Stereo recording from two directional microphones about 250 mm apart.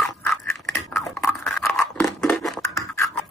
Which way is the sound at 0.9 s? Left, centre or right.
Centre.